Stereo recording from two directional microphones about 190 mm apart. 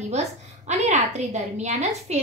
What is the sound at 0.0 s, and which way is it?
A woman's voice, 35° right (ahead or behind).